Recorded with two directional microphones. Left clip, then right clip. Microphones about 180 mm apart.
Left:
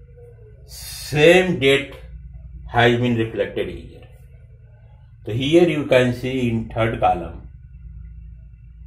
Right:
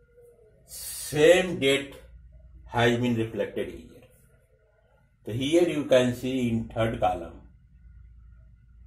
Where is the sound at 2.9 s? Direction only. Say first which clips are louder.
Left 7 dB; 35° right (ahead or behind).